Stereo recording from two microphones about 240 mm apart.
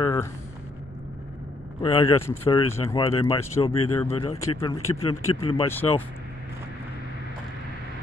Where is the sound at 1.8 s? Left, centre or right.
Centre.